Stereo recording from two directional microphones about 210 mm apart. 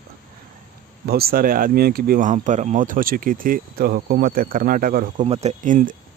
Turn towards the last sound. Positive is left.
turn(degrees=-40)  # may be behind; listen again after turning